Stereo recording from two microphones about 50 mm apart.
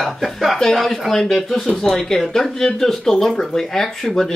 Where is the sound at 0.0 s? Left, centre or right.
Centre.